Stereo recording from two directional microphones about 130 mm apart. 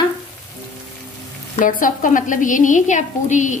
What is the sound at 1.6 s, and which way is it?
A woman's voice, 90° left.